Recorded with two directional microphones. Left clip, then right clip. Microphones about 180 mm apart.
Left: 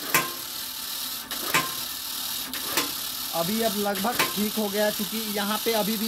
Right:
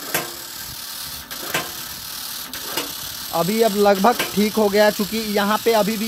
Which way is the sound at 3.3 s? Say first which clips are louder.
Right 8 dB; 60° right (ahead or behind).